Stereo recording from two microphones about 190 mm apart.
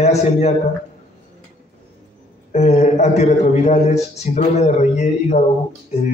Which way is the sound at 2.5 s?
35° left (ahead or behind).